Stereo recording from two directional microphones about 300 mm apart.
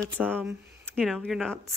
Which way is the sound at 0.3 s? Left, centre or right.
Centre.